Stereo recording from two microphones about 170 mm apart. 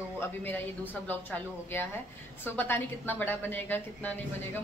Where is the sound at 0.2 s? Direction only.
10° left (ahead or behind).